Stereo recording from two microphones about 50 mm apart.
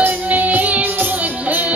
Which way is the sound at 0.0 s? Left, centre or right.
Right.